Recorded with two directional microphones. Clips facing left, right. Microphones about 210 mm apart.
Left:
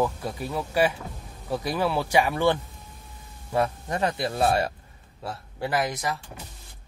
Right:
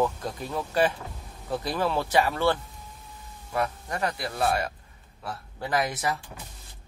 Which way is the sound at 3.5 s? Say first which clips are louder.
Left 4 dB; 25° left (ahead or behind).